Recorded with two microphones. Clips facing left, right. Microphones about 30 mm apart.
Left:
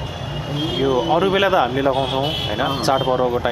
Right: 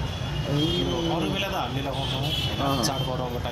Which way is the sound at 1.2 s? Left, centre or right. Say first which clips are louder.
Left 11 dB; left.